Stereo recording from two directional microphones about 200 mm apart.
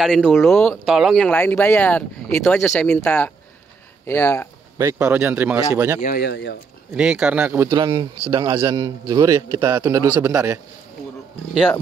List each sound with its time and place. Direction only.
0.0 s speech: centre (ahead or behind)
4.7 s a man's voice: 15° right (ahead or behind)
5.9 s speech: 45° left (ahead or behind)
7.0 s a man's voice: 5° right (ahead or behind)
7.7 s a man's voice: 25° right (ahead or behind)